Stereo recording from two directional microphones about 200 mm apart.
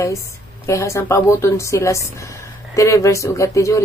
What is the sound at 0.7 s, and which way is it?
A woman's voice, 15° left (ahead or behind).